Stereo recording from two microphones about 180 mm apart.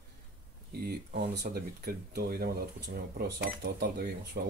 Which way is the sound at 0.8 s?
70° right (ahead or behind).